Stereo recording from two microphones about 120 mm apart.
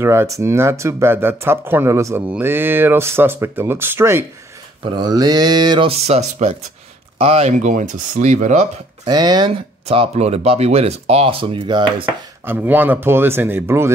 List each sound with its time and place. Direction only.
0.0 s speech: 20° right (ahead or behind)
4.9 s mantra: 35° right (ahead or behind)
5.9 s speech: 65° right (ahead or behind); by 8.6 s 85° right
9.0 s mantra: 35° right (ahead or behind)
9.8 s speech: 60° right (ahead or behind); by 12.2 s 40° right (ahead or behind)
12.4 s speech: 15° right (ahead or behind)